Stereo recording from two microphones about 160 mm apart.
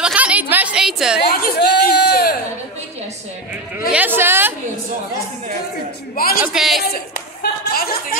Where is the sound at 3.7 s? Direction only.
10° right (ahead or behind).